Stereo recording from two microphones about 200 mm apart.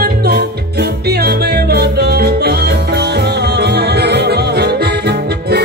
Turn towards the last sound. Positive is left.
turn(degrees=-55)  # may be behind; listen again after turning